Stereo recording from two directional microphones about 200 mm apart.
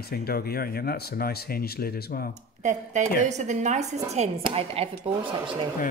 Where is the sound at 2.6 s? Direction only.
35° right (ahead or behind).